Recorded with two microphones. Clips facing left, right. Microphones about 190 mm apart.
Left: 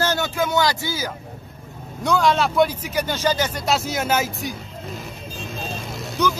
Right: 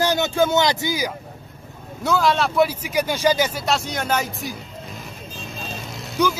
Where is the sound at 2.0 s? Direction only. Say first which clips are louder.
Left 1 dB; centre (ahead or behind).